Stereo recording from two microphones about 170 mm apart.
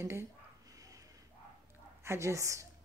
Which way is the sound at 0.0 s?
15° right (ahead or behind).